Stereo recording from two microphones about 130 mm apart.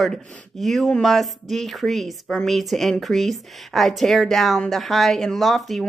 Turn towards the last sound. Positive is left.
turn(degrees=0)  # may be behind; listen again after turning